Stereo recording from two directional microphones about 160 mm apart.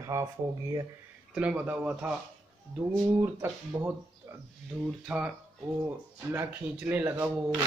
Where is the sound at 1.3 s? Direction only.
10° right (ahead or behind).